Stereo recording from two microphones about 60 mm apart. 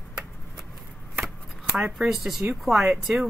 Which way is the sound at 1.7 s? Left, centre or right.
Centre.